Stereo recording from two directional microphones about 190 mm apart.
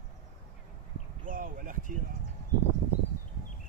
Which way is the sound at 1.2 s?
45° right (ahead or behind).